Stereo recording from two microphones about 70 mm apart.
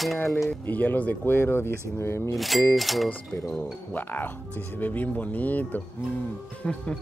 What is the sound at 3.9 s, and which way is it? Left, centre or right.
Speech, left.